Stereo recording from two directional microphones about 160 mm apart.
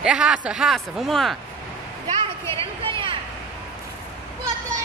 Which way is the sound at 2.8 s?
35° right (ahead or behind).